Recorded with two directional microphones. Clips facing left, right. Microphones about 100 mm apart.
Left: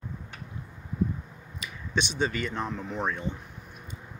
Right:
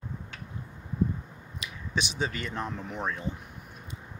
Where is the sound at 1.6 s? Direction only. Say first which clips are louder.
Left 2 dB; 5° right (ahead or behind).